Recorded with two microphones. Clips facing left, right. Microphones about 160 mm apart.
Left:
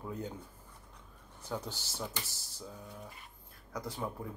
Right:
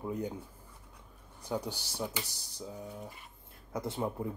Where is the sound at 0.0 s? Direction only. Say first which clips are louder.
Right 5 dB; 15° right (ahead or behind).